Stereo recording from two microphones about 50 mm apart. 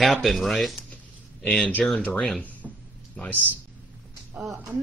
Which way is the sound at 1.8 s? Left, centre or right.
Centre.